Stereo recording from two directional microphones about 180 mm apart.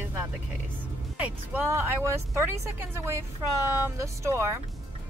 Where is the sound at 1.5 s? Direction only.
10° right (ahead or behind).